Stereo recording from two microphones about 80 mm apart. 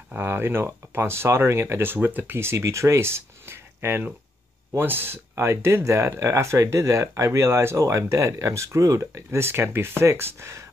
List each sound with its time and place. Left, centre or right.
0.1 s speech: right